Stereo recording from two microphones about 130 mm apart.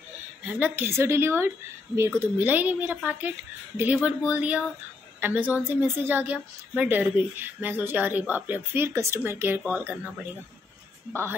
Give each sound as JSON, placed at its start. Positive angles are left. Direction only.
{"t": 0.6, "sound": "a woman's voice", "side_deg": -15}